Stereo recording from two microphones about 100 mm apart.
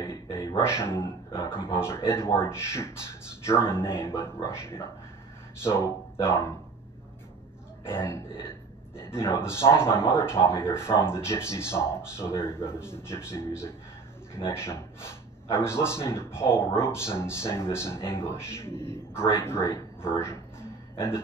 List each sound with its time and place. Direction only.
0.0 s a sound: 30° left (ahead or behind)
1.8 s speech: 25° left (ahead or behind)
7.9 s speech: 25° left (ahead or behind)
14.5 s speech: 25° left (ahead or behind)